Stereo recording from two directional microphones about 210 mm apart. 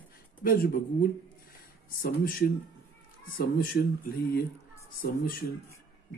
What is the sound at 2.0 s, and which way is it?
Speech, 45° left (ahead or behind).